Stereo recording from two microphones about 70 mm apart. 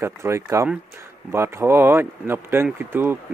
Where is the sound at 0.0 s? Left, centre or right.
Right.